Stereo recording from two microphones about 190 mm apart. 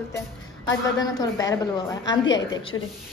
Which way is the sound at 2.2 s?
75° left (ahead or behind).